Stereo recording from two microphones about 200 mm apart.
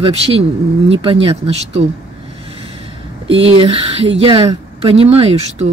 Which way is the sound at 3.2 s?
30° right (ahead or behind).